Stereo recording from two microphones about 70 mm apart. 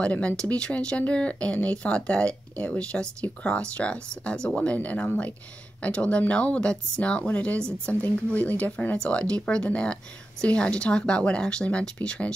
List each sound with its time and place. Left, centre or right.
0.0 s speech: centre